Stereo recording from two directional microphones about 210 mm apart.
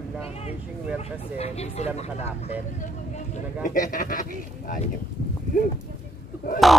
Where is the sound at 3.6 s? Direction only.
40° left (ahead or behind).